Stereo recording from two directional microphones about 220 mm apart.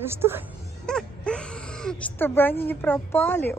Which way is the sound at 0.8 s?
5° left (ahead or behind).